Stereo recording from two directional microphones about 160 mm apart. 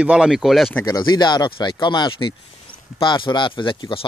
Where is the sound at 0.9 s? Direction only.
25° left (ahead or behind).